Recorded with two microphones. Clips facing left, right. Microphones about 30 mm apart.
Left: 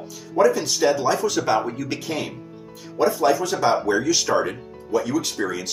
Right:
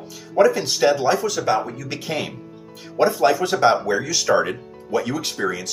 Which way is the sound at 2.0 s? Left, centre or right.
Right.